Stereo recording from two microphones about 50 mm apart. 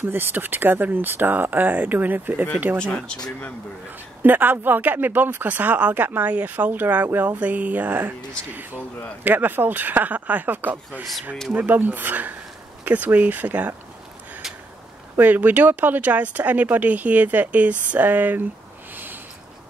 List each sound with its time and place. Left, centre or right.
0.0 s speech: right
2.8 s speech: centre
4.2 s speech: right
9.2 s speech: right
15.1 s speech: right